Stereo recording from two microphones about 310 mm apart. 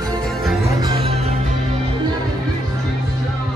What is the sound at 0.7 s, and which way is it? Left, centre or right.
Music, centre.